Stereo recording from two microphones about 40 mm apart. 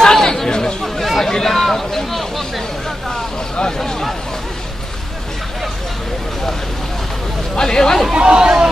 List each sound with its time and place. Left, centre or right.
0.0 s chatter: centre
1.2 s a sound: centre
7.5 s chatter: centre
8.1 s chatter: right